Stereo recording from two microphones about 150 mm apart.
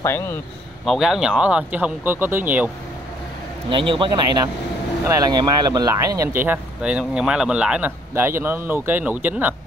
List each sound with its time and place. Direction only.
0.0 s speech: 15° left (ahead or behind)
0.8 s speech: centre (ahead or behind)
3.7 s a man's voice: 35° right (ahead or behind); by 9.6 s 10° right (ahead or behind)